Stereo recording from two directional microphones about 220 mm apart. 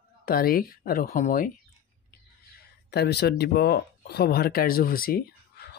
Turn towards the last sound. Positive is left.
turn(degrees=45)  # may be behind; listen again after turning